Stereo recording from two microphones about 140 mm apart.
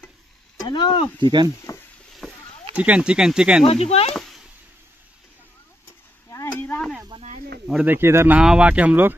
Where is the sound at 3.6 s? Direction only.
45° left (ahead or behind).